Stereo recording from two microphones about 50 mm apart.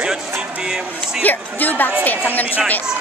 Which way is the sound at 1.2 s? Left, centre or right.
Left.